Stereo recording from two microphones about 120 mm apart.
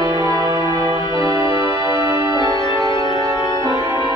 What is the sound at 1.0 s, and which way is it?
Music, 40° left (ahead or behind).